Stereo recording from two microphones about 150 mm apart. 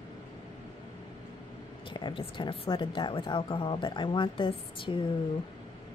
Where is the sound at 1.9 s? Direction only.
35° left (ahead or behind).